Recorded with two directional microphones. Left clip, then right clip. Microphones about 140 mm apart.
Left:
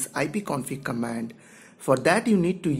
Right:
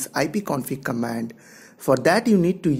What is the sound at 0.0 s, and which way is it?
Speech, 30° right (ahead or behind).